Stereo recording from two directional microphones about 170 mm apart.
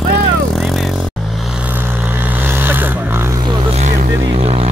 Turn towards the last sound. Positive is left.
turn(degrees=-35)  # may be behind; listen again after turning